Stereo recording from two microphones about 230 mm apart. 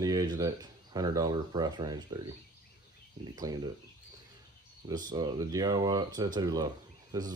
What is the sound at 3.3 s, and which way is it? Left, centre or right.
Speech, centre.